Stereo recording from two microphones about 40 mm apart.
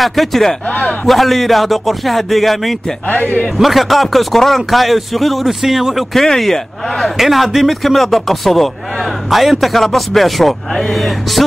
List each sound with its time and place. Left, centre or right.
0.0 s speech: centre
3.1 s a man's voice: left
3.5 s speech: centre
6.1 s speech: centre